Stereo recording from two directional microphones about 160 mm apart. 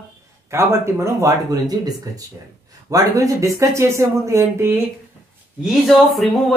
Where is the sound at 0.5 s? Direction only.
15° right (ahead or behind).